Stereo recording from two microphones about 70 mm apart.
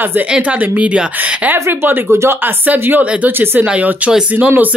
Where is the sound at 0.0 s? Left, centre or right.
Right.